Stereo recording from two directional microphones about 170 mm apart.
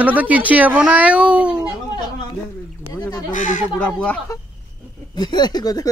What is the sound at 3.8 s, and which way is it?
Speech, 5° left (ahead or behind).